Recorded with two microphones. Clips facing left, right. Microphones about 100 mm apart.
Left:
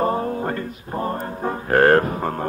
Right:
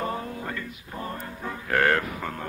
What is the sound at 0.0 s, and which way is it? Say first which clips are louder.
Music: left 9 dB; 40° left (ahead or behind).